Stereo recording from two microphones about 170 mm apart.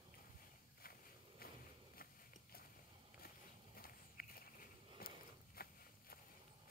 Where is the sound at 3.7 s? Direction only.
60° left (ahead or behind).